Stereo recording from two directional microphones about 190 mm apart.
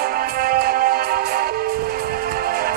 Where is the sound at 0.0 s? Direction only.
50° right (ahead or behind).